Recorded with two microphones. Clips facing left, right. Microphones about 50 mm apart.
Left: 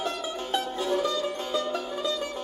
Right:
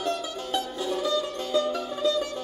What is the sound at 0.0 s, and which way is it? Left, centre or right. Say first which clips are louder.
Music: right 1 dB; left.